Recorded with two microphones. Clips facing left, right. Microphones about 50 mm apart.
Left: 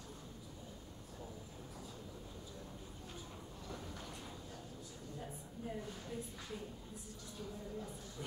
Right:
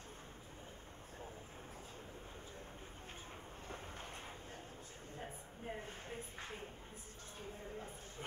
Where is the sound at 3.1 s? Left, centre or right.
Right.